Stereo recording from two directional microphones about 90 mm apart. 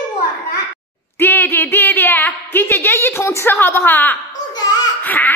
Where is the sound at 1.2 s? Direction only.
25° left (ahead or behind).